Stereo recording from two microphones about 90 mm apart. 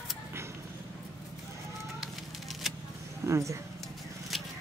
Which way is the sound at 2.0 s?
Centre (ahead or behind).